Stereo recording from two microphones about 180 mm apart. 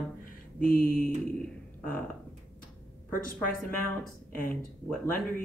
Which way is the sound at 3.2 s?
50° left (ahead or behind).